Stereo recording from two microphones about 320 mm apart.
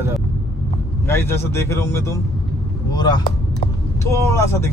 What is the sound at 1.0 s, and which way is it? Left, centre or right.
A man's voice, centre.